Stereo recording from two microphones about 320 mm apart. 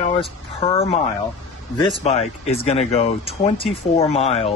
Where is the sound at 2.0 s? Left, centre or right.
Centre.